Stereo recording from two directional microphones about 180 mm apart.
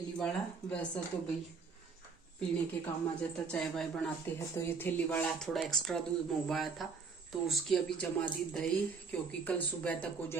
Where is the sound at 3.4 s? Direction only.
5° left (ahead or behind).